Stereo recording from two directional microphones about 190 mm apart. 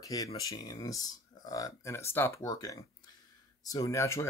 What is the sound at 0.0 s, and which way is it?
Speech, 20° left (ahead or behind).